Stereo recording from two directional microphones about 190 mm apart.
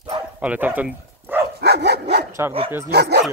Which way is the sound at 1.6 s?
60° right (ahead or behind).